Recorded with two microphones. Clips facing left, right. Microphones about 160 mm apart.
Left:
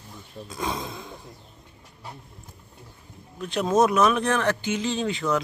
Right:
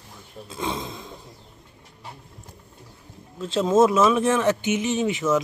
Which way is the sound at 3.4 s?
25° right (ahead or behind).